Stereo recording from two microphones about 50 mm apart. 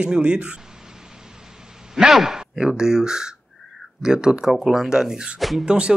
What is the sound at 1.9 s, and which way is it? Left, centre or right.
A man's voice, centre.